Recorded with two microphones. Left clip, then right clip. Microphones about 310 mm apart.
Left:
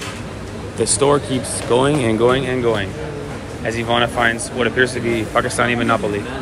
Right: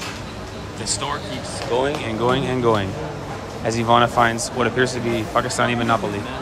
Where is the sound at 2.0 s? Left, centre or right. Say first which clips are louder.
Left 5 dB; centre.